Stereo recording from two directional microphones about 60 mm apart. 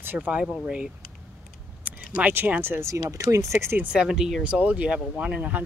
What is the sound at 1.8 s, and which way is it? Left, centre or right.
Speech, right.